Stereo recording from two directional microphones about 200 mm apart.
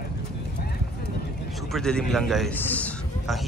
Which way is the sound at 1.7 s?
Centre (ahead or behind).